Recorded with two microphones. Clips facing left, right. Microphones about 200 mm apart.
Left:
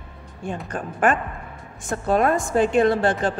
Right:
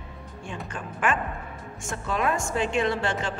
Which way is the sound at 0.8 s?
50° left (ahead or behind).